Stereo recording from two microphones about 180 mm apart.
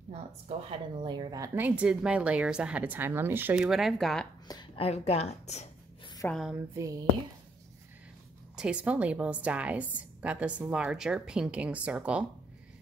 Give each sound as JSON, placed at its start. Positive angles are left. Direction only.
{"t": 0.1, "sound": "a woman's voice", "side_deg": -35}
{"t": 4.5, "sound": "a woman's voice", "side_deg": 30}
{"t": 6.2, "sound": "a woman's voice", "side_deg": 0}
{"t": 6.8, "sound": "speech", "side_deg": -20}
{"t": 8.5, "sound": "a woman's voice", "side_deg": -5}